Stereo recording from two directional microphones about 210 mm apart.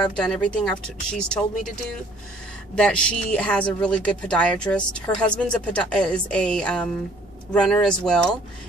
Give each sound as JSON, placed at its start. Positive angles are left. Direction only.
{"t": 0.0, "sound": "speech", "side_deg": 5}
{"t": 2.7, "sound": "speech", "side_deg": 5}